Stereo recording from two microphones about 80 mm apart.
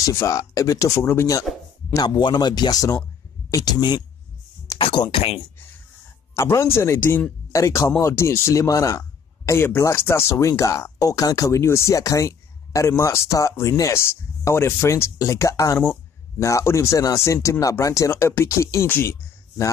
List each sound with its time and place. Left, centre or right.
0.1 s speech: left
1.5 s speech: centre
2.0 s speech: left
4.7 s a sound: left
6.3 s speech: left
9.8 s speech: left
10.3 s speech: left
11.6 s speech: left